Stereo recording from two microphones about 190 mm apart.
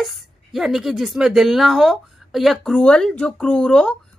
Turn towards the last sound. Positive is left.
turn(degrees=5)  # may be behind; listen again after turning